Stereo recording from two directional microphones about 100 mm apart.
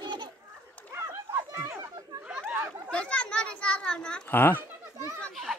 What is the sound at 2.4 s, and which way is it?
Chatter, 15° right (ahead or behind).